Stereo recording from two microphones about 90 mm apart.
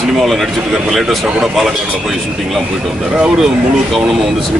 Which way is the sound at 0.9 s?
Centre (ahead or behind).